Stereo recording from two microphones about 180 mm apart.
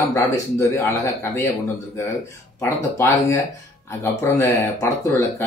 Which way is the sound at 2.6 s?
15° left (ahead or behind).